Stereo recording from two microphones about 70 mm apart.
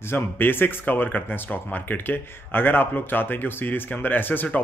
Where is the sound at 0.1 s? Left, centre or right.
Left.